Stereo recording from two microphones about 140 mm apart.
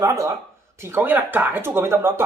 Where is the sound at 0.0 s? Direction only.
20° right (ahead or behind).